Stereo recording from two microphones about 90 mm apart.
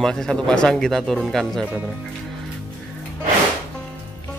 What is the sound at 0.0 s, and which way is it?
Speech, 5° left (ahead or behind).